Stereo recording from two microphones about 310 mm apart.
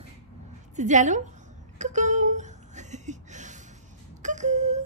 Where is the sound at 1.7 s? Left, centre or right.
Right.